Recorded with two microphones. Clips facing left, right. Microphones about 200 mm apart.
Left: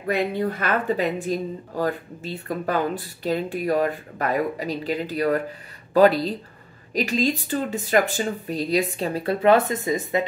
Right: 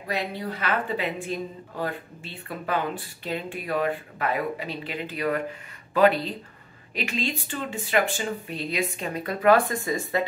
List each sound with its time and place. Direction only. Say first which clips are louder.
0.1 s speech: left 7 dB; 55° left (ahead or behind); by 10.2 s 20° left (ahead or behind)